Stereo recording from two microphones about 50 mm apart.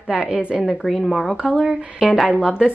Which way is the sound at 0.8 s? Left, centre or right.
Centre.